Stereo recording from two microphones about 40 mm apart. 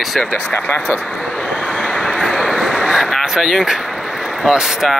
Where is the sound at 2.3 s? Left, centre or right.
Centre.